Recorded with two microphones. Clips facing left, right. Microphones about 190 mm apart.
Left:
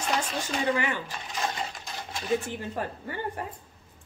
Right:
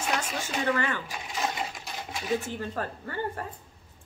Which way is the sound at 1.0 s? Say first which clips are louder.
Right 1 dB; 10° right (ahead or behind).